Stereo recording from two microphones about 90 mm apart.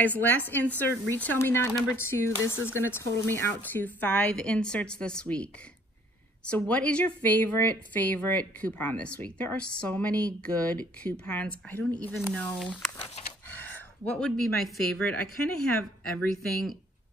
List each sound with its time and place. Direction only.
0.0 s speech: 20° left (ahead or behind)
3.6 s speech: 20° left (ahead or behind)
13.5 s a woman's voice: 20° left (ahead or behind)